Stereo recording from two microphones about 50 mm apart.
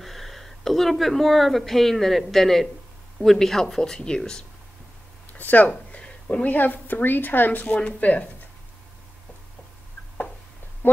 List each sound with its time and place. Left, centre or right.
0.0 s speech: centre
5.4 s a sound: left
6.5 s a woman's voice: left
7.6 s speech: left